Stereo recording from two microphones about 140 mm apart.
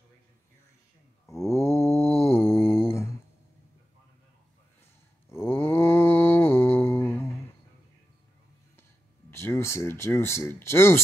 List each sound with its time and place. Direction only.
1.2 s mantra: 20° left (ahead or behind)
5.3 s mantra: 15° left (ahead or behind)
9.3 s speech: 20° left (ahead or behind)